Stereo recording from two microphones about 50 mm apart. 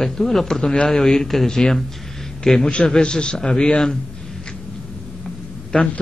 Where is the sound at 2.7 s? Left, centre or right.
Centre.